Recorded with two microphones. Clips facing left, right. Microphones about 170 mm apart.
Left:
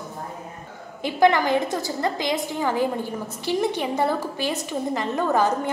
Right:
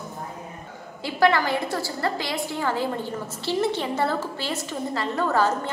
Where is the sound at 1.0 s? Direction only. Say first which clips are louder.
Left 2 dB; 20° left (ahead or behind).